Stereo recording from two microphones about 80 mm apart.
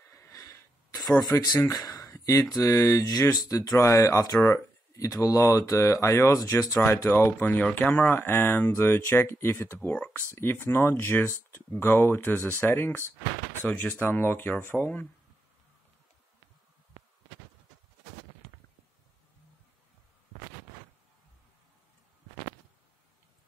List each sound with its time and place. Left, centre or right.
0.1 s a sound: left
1.4 s speech: left
7.1 s speech: left